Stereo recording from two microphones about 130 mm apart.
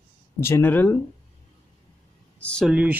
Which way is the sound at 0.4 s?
20° left (ahead or behind).